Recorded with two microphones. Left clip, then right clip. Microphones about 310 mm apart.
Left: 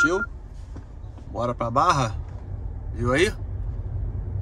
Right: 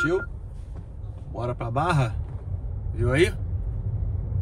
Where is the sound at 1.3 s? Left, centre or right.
Centre.